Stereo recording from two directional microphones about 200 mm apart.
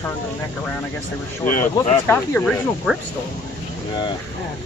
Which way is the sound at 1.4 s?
45° left (ahead or behind).